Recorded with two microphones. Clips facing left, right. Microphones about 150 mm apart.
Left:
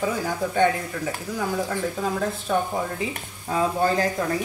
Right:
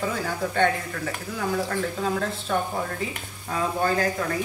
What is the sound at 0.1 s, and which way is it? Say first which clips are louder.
Speech: left 2 dB; 10° left (ahead or behind).